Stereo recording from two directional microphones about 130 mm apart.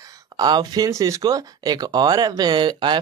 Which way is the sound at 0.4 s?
30° right (ahead or behind).